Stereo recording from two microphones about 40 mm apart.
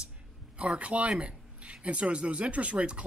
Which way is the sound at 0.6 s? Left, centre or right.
Right.